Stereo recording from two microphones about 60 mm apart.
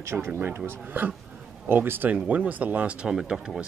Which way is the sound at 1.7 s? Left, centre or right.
Right.